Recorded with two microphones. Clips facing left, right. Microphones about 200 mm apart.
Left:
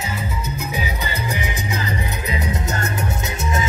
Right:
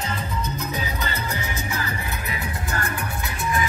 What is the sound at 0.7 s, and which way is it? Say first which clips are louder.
Music: left 2 dB; 15° left (ahead or behind).